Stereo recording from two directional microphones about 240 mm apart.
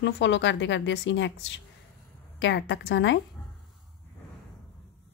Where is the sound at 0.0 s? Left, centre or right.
Left.